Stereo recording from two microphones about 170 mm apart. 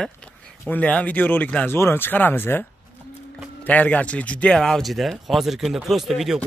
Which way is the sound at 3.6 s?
10° left (ahead or behind).